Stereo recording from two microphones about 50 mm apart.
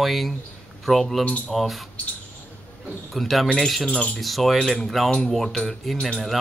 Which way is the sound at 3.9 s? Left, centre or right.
Centre.